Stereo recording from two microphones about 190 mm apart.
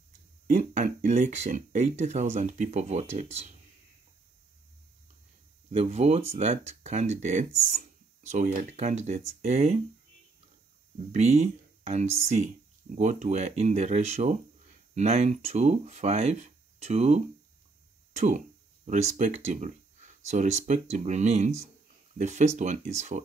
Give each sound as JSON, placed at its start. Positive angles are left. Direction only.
{"t": 0.5, "sound": "speech", "side_deg": -40}
{"t": 5.7, "sound": "speech", "side_deg": -30}
{"t": 11.1, "sound": "speech", "side_deg": -35}